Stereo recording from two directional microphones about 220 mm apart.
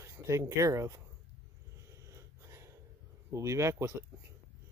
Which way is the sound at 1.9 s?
15° right (ahead or behind).